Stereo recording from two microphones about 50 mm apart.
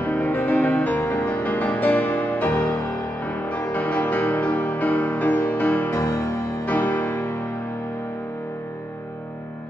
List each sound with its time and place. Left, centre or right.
0.0 s music: left
5.9 s music: left
6.6 s music: left